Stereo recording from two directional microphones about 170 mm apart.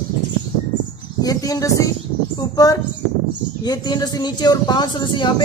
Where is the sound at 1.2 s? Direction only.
20° left (ahead or behind).